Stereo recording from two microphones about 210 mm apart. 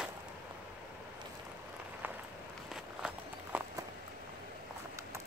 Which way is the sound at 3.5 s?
5° right (ahead or behind).